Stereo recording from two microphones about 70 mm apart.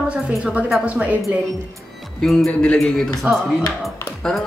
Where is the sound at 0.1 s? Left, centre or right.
Centre.